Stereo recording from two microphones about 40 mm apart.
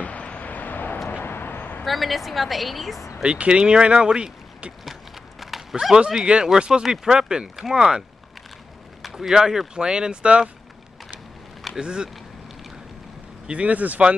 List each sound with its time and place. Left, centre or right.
0.0 s vehicle: left
0.5 s vehicle: left
1.1 s vehicle: left
1.6 s vehicle: left
1.9 s a woman's voice: centre
3.3 s speech: right
5.4 s horse: centre
5.8 s speech: centre
7.5 s speech: centre
9.1 s speech: centre
11.8 s speech: right
13.5 s speech: right